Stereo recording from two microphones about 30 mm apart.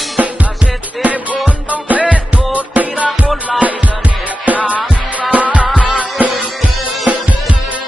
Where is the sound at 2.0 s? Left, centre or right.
Right.